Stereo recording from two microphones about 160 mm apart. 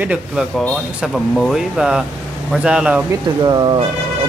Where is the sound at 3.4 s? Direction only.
25° right (ahead or behind).